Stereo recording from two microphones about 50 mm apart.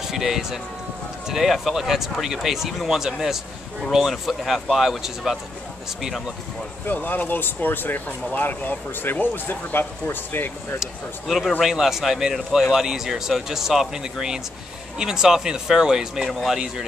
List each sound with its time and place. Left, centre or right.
0.0 s speech: centre
6.9 s speech: left
10.8 s speech: centre
16.3 s speech: centre
16.5 s speech: centre